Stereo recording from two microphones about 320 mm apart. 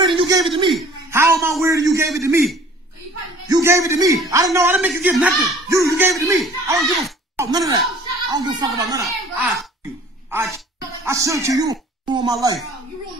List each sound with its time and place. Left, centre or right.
0.0 s a man's voice: centre
9.0 s a child's voice: centre